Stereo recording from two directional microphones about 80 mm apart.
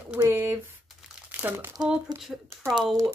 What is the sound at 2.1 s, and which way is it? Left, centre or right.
Speech, right.